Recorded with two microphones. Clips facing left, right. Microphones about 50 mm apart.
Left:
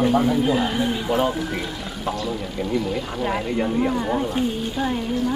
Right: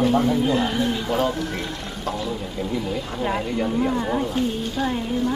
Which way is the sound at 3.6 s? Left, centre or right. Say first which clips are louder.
Left 1 dB; centre.